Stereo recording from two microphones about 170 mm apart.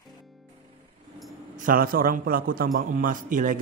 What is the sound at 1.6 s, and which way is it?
A man's voice, 55° right (ahead or behind).